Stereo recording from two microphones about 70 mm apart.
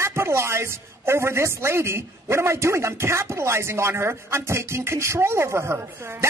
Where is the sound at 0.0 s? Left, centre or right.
Right.